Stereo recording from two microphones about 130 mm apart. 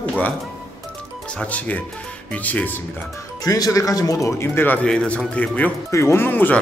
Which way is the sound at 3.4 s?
30° left (ahead or behind).